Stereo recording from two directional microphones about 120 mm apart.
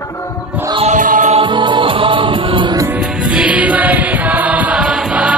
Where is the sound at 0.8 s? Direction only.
90° right.